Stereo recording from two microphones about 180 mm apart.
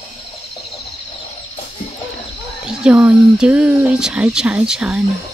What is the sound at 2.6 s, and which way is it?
Speech, 5° right (ahead or behind).